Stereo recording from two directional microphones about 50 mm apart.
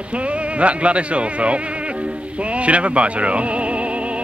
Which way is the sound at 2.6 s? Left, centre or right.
Right.